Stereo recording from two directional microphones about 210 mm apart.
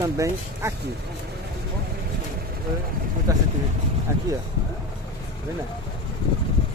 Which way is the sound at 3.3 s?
15° right (ahead or behind).